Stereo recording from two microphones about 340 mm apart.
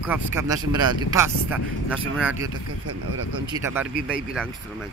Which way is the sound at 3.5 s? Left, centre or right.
Centre.